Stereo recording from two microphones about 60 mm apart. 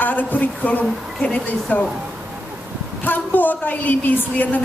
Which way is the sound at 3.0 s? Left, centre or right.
Left.